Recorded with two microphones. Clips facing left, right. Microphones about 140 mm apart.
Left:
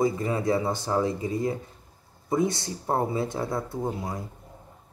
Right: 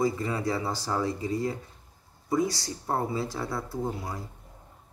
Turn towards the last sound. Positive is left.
turn(degrees=20)  # may be behind; listen again after turning